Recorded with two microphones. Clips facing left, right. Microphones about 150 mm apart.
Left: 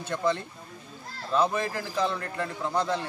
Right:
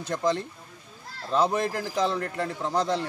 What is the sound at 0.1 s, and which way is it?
A man's voice, 35° right (ahead or behind).